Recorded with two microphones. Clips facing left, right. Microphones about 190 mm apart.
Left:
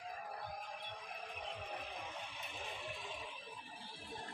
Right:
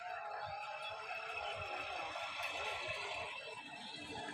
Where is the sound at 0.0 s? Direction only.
60° right (ahead or behind).